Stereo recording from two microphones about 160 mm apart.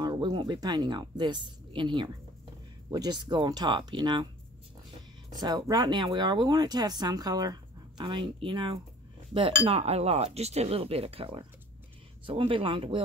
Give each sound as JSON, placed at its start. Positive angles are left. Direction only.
{"t": 0.0, "sound": "speech", "side_deg": -25}
{"t": 5.3, "sound": "speech", "side_deg": -25}